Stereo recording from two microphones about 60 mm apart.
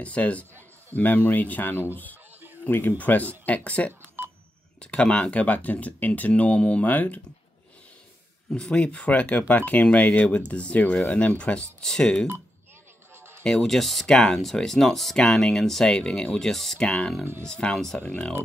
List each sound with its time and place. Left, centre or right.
0.0 s speech: left
8.5 s speech: centre
13.1 s music: right
13.4 s speech: centre
16.8 s speech: centre
18.0 s speech: centre